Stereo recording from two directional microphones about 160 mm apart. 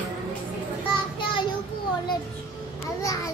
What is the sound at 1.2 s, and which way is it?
Child singing, 30° left (ahead or behind).